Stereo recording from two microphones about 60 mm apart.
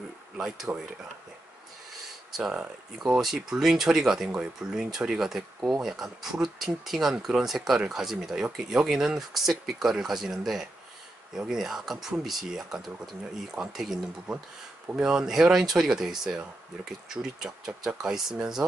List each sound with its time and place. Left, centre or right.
0.7 s speech: right
2.3 s speech: centre